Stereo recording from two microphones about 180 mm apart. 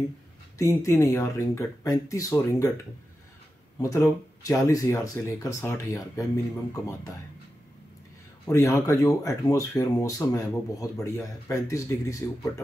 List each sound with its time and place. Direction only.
0.6 s speech: 20° left (ahead or behind)
3.8 s speech: 20° left (ahead or behind)
8.5 s speech: 15° left (ahead or behind)